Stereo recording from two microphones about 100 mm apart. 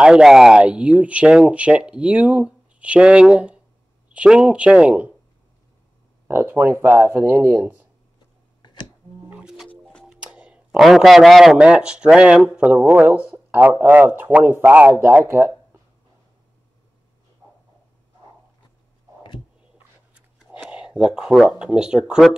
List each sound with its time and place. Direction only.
0.0 s speech: 5° right (ahead or behind)
6.2 s speech: 25° right (ahead or behind)
9.3 s music: 5° right (ahead or behind)
10.1 s speech: 10° right (ahead or behind); by 15.5 s 25° right (ahead or behind)
20.7 s speech: 10° right (ahead or behind)